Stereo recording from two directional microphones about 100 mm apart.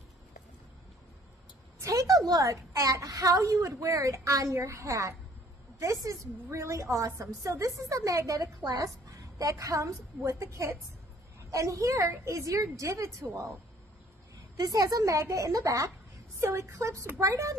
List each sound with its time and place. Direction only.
1.8 s a woman's voice: 35° right (ahead or behind)
14.6 s a woman's voice: 40° right (ahead or behind)